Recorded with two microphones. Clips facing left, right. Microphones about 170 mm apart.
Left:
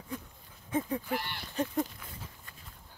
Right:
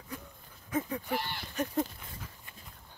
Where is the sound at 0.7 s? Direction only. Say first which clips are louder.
Left 1 dB; 30° left (ahead or behind).